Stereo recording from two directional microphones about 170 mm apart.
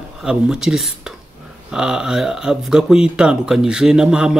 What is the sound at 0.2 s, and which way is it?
Speech, 5° right (ahead or behind).